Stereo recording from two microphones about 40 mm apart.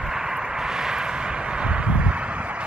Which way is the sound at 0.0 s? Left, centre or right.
Centre.